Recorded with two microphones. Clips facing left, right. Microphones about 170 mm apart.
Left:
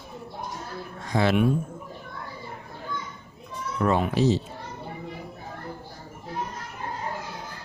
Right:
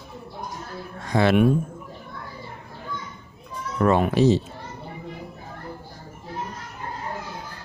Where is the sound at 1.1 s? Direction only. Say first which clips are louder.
Right 4 dB; 60° right (ahead or behind).